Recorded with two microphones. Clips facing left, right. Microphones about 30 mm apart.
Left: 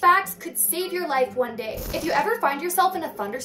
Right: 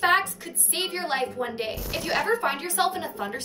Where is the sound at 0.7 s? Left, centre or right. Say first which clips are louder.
Left 4 dB; right.